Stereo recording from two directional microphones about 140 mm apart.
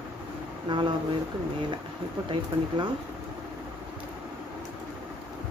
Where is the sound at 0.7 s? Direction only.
35° right (ahead or behind).